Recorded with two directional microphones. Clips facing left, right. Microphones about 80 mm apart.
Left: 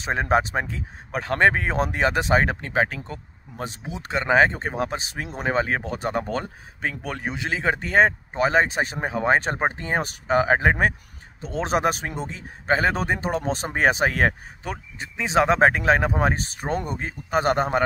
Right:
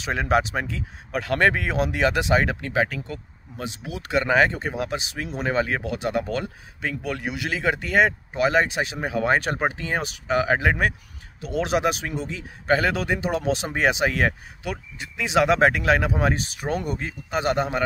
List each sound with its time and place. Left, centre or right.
0.0 s speech: left